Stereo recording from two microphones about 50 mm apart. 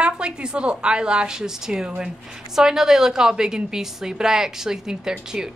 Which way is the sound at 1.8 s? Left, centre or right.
Right.